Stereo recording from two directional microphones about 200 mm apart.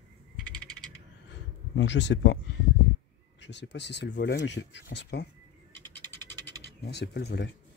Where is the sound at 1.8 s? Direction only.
65° left (ahead or behind).